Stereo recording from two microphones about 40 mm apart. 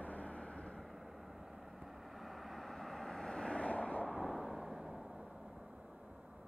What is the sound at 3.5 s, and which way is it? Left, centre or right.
Vehicle, left.